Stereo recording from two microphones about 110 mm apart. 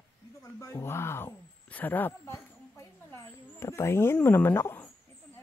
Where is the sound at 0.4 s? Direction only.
25° left (ahead or behind).